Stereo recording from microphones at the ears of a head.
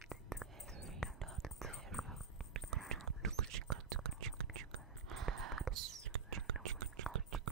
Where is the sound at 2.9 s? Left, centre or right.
Right.